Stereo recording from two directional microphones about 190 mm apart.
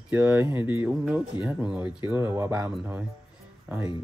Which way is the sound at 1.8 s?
25° left (ahead or behind).